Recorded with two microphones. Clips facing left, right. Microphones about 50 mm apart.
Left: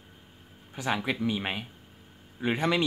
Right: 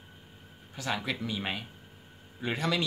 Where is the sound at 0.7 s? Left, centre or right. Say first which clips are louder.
Left 4 dB; left.